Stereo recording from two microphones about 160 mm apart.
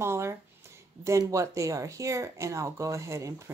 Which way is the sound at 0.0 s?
15° right (ahead or behind).